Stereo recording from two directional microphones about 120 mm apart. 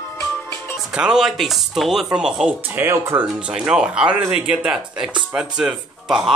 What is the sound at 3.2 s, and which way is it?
A woman's voice, 5° right (ahead or behind).